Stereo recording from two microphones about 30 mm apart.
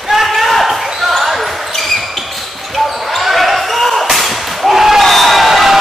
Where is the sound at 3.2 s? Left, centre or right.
Centre.